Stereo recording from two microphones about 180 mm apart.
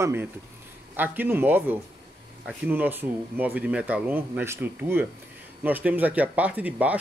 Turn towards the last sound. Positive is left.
turn(degrees=-10)  # may be behind; listen again after turning